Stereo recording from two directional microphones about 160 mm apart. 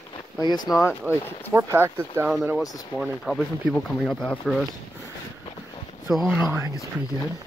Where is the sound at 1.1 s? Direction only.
10° right (ahead or behind).